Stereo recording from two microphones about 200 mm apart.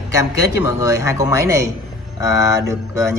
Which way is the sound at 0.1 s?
15° right (ahead or behind).